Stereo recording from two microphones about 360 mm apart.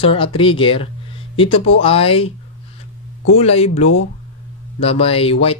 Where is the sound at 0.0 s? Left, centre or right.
Centre.